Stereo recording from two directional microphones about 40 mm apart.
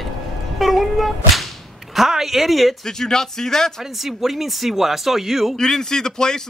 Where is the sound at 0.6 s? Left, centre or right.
Centre.